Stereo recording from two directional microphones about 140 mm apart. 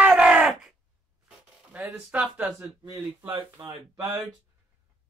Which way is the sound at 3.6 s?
25° right (ahead or behind).